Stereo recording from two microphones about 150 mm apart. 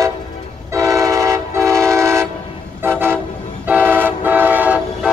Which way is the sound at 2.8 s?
15° right (ahead or behind).